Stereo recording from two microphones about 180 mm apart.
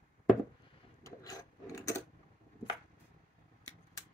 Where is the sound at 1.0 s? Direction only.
20° left (ahead or behind).